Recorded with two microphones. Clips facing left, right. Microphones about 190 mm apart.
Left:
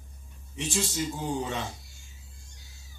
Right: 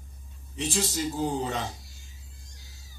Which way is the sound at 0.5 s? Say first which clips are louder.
Right 2 dB; 35° right (ahead or behind).